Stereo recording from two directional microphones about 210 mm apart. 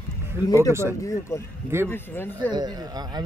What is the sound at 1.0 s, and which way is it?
Speech, 15° left (ahead or behind).